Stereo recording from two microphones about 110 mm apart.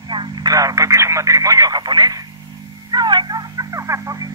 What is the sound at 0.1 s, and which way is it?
Radio, 40° right (ahead or behind).